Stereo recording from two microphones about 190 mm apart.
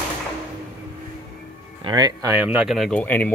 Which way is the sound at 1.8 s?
20° right (ahead or behind).